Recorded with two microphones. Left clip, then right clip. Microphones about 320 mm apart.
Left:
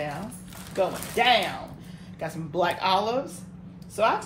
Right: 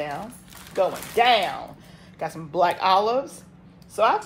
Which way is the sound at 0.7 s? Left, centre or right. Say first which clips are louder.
Right 4 dB; centre.